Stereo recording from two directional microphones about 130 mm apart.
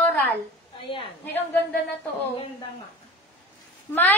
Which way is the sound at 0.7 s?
40° left (ahead or behind).